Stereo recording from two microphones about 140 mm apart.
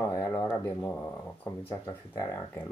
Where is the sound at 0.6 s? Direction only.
10° left (ahead or behind).